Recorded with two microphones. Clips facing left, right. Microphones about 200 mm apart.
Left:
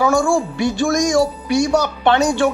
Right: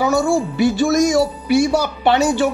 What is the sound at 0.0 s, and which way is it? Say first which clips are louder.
Speech: even; 5° right (ahead or behind).